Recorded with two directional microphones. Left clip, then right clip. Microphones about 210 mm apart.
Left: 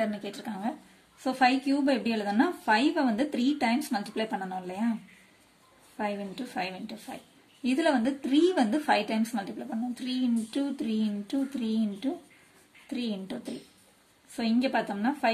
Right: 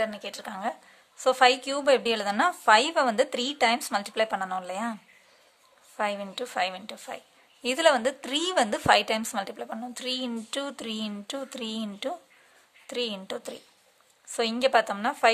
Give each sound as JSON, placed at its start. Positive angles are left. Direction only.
{"t": 0.0, "sound": "speech", "side_deg": -35}
{"t": 5.9, "sound": "speech", "side_deg": -45}